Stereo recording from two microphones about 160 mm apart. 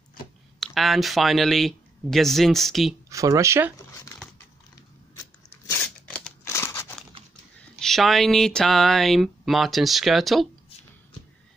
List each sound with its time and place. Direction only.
0.6 s speech: centre (ahead or behind)
3.1 s speech: 20° right (ahead or behind)
3.7 s zipper: 20° left (ahead or behind)
5.8 s scissors: 5° left (ahead or behind)
6.4 s crunch: 15° left (ahead or behind)
7.8 s speech: centre (ahead or behind)